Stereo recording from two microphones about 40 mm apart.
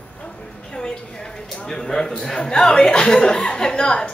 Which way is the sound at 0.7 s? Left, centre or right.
Centre.